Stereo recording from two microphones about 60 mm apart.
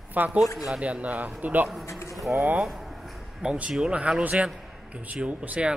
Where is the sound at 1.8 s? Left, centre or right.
Left.